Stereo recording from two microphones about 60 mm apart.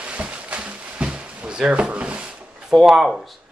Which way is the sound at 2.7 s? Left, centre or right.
Centre.